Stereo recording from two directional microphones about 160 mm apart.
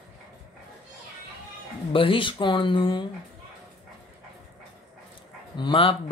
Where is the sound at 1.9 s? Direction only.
35° left (ahead or behind).